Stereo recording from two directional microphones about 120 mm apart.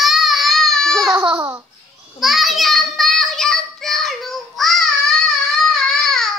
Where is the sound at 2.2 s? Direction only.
Centre (ahead or behind).